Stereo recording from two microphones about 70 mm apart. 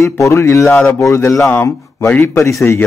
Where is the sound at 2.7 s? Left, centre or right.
Left.